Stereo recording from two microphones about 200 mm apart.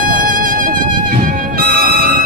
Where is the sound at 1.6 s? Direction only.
50° right (ahead or behind).